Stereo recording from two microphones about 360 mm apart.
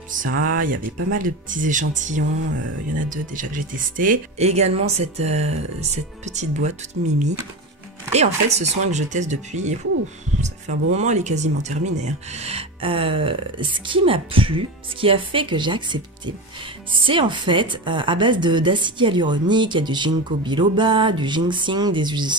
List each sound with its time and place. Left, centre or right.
0.1 s speech: right
8.1 s speech: centre
17.0 s speech: centre